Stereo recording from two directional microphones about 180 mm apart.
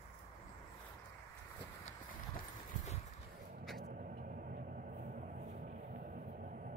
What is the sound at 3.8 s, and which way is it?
Vehicle, 50° right (ahead or behind).